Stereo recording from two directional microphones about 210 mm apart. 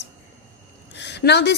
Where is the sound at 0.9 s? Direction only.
55° left (ahead or behind).